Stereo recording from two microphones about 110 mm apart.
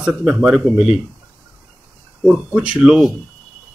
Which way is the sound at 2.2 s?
10° right (ahead or behind).